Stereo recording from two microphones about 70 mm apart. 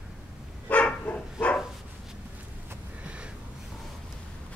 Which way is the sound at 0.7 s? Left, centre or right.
Centre.